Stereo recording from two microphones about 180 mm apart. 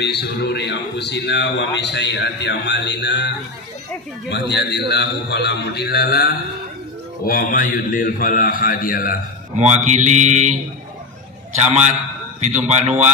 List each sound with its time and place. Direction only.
0.0 s a man's voice: 65° left (ahead or behind)
7.2 s a man's voice: 50° left (ahead or behind)
9.6 s mantra: 40° right (ahead or behind)
11.6 s mantra: 40° right (ahead or behind)